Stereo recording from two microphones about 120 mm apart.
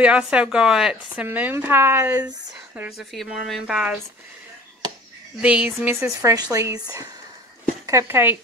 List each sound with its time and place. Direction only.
0.0 s speech: 10° right (ahead or behind)
1.2 s speech: 15° right (ahead or behind)
3.0 s speech: centre (ahead or behind)
5.4 s speech: 10° right (ahead or behind)
5.9 s speech: 25° right (ahead or behind)